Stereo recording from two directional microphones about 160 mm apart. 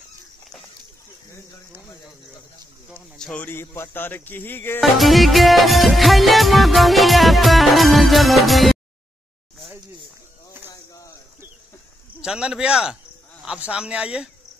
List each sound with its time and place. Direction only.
3.2 s speech: 5° left (ahead or behind)
4.9 s music: centre (ahead or behind)
10.7 s a sound: 20° left (ahead or behind)
12.2 s speech: 5° right (ahead or behind)